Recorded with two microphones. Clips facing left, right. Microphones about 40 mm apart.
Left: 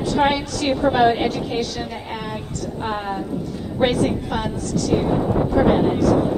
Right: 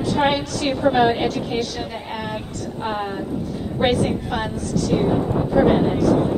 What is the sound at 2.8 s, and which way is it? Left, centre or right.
Speech, centre.